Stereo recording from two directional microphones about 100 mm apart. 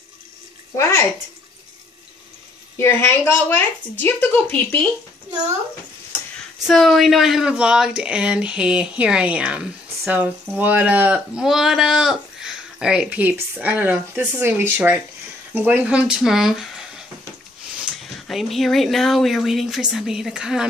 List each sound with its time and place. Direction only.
0.7 s a woman's voice: 25° left (ahead or behind)
2.8 s a woman's voice: 25° left (ahead or behind)
6.7 s speech: centre (ahead or behind)
18.2 s speech: centre (ahead or behind)